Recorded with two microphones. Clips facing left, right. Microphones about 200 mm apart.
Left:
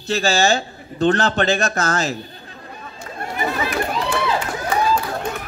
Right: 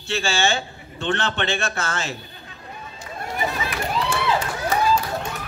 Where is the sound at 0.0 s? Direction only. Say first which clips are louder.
Left 5 dB; 40° left (ahead or behind).